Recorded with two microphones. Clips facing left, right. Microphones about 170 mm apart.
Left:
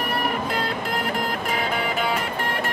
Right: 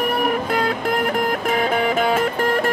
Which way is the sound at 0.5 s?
50° right (ahead or behind).